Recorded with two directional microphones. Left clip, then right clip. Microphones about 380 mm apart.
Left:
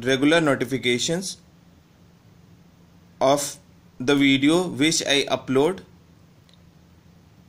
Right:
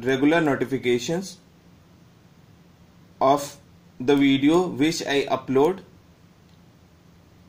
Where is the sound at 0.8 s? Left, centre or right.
Left.